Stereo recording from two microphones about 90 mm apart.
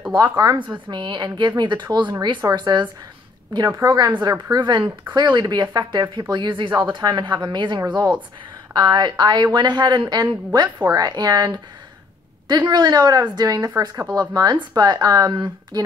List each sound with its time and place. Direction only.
0.1 s a woman's voice: 45° right (ahead or behind)
0.6 s speech: 60° right (ahead or behind)
3.7 s a woman's voice: 40° right (ahead or behind)
4.3 s a woman's voice: 55° right (ahead or behind); by 14.0 s 35° right (ahead or behind)
14.3 s a woman's voice: 50° right (ahead or behind)